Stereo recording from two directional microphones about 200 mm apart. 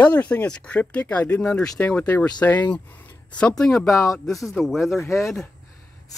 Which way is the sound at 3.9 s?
15° left (ahead or behind).